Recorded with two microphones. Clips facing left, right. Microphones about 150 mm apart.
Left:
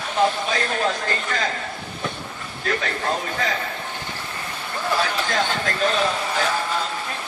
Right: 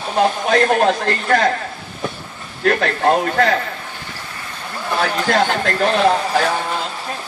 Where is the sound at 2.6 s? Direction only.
65° right (ahead or behind).